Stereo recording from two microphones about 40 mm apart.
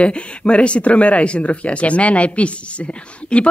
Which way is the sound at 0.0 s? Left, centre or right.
Left.